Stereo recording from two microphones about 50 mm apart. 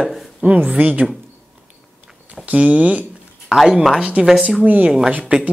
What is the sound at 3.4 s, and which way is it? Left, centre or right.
Speech, centre.